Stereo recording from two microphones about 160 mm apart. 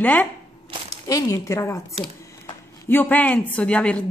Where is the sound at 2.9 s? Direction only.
10° left (ahead or behind).